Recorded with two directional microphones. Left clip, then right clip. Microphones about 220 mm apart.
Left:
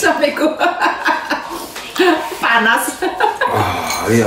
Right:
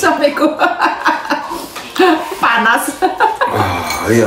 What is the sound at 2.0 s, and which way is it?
Music, 25° right (ahead or behind).